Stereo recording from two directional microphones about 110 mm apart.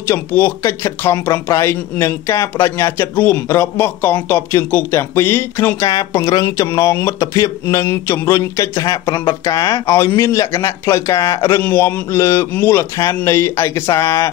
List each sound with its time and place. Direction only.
0.1 s a man's voice: 20° left (ahead or behind)
5.9 s a man's voice: 30° left (ahead or behind)
12.9 s a man's voice: 35° left (ahead or behind)